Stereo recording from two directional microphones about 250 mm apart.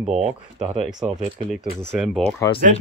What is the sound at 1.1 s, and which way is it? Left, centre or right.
Speech, right.